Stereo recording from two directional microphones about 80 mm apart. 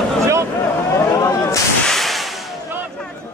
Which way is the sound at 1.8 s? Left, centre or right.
Centre.